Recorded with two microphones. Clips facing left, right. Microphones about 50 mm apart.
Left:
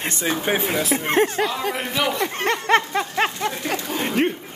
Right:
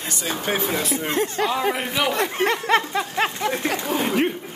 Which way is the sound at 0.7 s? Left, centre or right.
Centre.